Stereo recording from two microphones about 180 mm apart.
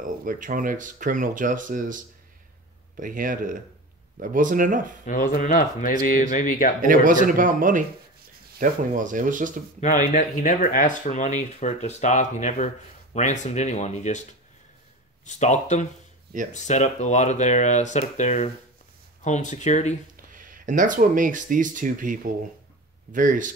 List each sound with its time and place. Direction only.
0.0 s speech: 50° right (ahead or behind)
3.0 s speech: 50° right (ahead or behind)
5.0 s speech: 45° left (ahead or behind)
6.8 s speech: 50° right (ahead or behind)
9.8 s speech: 40° left (ahead or behind)
15.2 s speech: 40° left (ahead or behind)
20.3 s speech: 50° right (ahead or behind)